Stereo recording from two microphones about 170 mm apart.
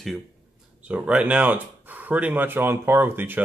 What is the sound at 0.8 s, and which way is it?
Speech, 5° right (ahead or behind).